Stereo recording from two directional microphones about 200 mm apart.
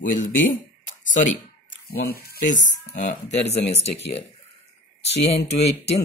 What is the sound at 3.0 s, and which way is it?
Speech, 35° left (ahead or behind).